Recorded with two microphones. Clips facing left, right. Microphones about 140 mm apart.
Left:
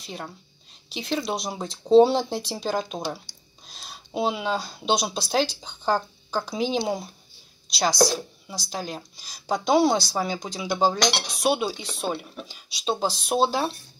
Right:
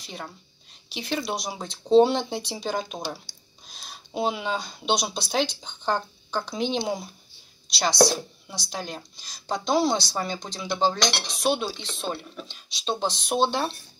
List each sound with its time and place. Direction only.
0.0 s speech: centre (ahead or behind)